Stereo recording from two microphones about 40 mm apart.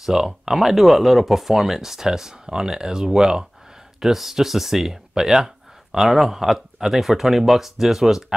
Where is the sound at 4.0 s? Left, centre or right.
Centre.